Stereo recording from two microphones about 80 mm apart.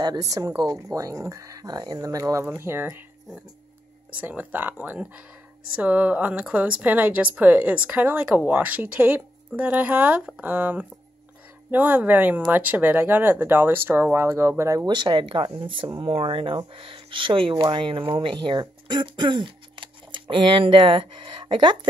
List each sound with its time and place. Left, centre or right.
0.0 s speech: right
2.0 s speech: right
2.4 s speech: right
4.1 s speech: centre; by 14.9 s right
14.9 s speech: right